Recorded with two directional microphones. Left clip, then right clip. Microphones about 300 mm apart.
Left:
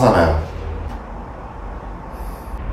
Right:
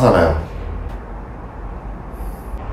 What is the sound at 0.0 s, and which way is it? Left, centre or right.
Speech, centre.